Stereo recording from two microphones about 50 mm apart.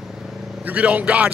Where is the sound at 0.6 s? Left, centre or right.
Right.